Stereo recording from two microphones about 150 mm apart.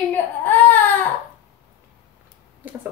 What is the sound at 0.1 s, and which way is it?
Baby cry, 10° left (ahead or behind).